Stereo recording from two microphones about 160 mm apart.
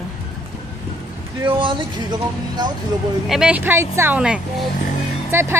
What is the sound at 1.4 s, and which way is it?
Speech, 30° right (ahead or behind).